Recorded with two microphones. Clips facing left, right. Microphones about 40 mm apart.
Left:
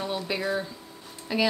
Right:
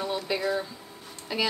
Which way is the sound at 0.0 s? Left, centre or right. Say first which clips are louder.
Right 1 dB; centre.